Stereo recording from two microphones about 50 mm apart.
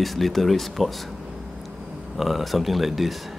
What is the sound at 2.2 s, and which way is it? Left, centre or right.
Speech, centre.